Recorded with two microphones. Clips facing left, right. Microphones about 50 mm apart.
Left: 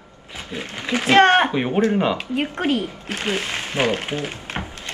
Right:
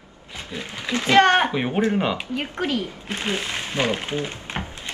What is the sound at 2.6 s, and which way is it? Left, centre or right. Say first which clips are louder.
Speech: left 2 dB; left.